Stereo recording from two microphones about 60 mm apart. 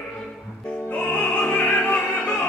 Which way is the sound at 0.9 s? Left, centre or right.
Left.